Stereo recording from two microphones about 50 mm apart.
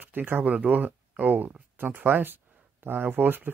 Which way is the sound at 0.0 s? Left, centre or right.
Right.